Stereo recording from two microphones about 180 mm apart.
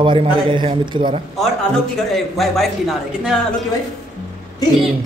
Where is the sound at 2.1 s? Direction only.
Centre (ahead or behind).